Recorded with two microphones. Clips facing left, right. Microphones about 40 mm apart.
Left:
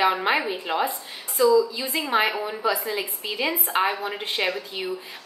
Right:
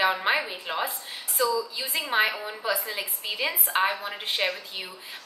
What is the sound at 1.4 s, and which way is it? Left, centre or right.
Speech, left.